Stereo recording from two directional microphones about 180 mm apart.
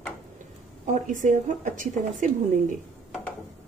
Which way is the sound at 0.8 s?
45° right (ahead or behind).